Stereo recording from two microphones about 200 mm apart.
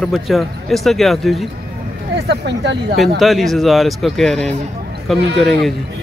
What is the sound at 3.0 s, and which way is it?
Speech, centre (ahead or behind).